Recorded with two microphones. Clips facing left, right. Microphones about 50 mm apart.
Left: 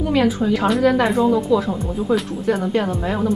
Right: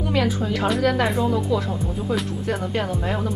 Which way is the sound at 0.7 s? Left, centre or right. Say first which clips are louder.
Left 3 dB; centre.